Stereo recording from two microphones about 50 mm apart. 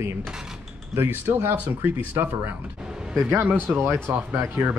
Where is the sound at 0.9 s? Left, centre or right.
Right.